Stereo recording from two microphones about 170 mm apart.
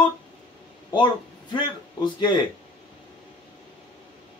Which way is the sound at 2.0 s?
25° left (ahead or behind).